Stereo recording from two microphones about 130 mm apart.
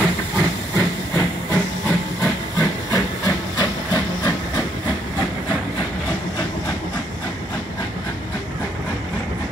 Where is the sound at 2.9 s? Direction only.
30° left (ahead or behind).